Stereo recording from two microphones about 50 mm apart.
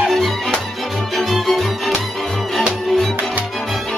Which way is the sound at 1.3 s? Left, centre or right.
Centre.